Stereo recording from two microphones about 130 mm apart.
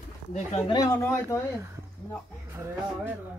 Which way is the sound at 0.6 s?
30° left (ahead or behind).